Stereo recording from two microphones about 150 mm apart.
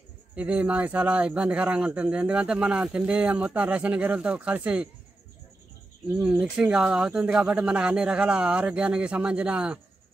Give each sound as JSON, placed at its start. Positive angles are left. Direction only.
{"t": 0.4, "sound": "a man's voice", "side_deg": -10}
{"t": 6.1, "sound": "speech", "side_deg": -5}